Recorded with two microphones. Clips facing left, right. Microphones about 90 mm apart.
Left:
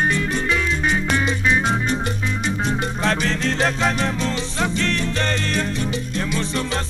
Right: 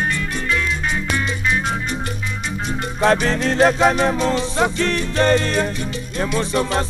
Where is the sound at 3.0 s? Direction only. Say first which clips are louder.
Right 8 dB; 15° right (ahead or behind).